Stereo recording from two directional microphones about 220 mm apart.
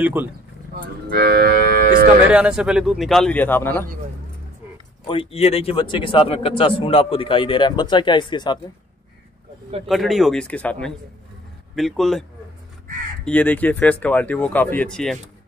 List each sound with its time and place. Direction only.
0.0 s speech: 10° right (ahead or behind)
0.7 s cattle: 45° right (ahead or behind)
2.3 s speech: 5° right (ahead or behind)
5.0 s a man's voice: 25° left (ahead or behind)
9.8 s speech: centre (ahead or behind)